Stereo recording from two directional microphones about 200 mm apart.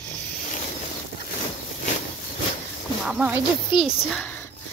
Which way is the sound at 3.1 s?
10° right (ahead or behind).